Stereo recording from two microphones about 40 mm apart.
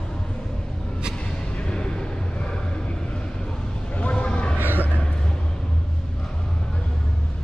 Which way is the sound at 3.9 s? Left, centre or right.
Left.